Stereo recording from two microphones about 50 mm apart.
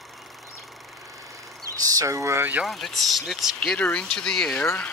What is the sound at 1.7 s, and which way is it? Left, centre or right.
Speech, right.